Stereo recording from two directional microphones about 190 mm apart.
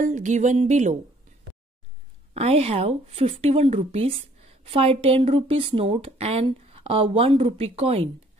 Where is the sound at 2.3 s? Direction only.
35° right (ahead or behind).